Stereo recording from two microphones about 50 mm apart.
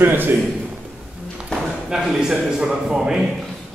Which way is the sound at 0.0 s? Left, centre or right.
Right.